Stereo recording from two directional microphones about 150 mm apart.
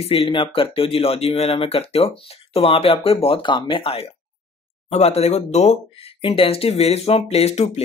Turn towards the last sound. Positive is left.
turn(degrees=45)  # may be behind; listen again after turning